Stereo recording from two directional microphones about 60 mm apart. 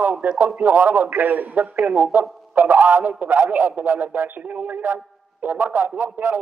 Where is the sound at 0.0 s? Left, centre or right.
Right.